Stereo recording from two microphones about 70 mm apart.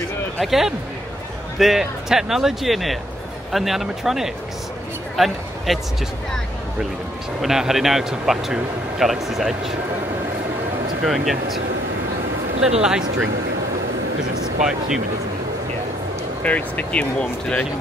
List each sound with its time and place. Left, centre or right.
0.4 s speech: centre
5.1 s a sound: centre
7.4 s speech: centre
11.1 s speech: centre
12.6 s speech: centre
14.4 s speech: centre
16.4 s speech: left